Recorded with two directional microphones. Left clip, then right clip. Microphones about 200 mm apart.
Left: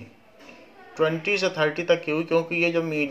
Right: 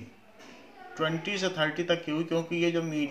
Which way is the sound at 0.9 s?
35° left (ahead or behind).